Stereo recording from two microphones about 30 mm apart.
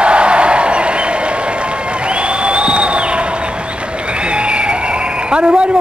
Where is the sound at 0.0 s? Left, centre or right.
Right.